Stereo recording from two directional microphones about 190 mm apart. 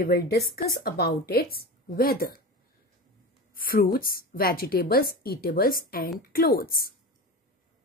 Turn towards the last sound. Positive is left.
turn(degrees=50)  # may be behind; listen again after turning